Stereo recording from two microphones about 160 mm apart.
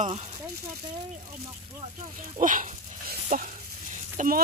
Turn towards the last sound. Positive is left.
turn(degrees=-55)  # may be behind; listen again after turning